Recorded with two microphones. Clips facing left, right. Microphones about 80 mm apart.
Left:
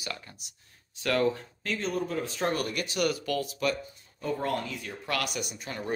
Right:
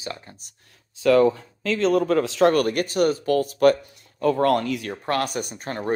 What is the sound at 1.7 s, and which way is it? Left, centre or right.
Speech, right.